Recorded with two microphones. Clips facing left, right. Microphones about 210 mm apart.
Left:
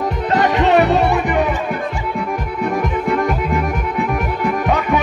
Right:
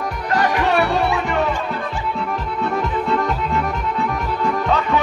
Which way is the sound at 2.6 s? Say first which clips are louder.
Left 3 dB; 15° left (ahead or behind).